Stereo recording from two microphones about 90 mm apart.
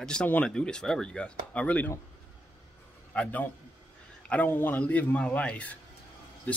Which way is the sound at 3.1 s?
15° left (ahead or behind).